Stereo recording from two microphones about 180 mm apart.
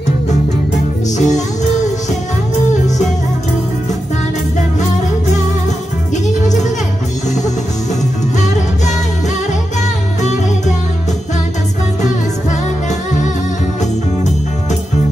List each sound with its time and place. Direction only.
1.1 s music: 40° left (ahead or behind)
7.2 s music: 40° left (ahead or behind)